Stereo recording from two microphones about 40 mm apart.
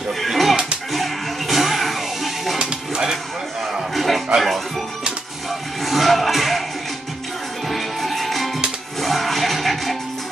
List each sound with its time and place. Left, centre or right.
0.2 s music: centre
2.6 s music: centre
3.9 s music: centre
7.6 s music: centre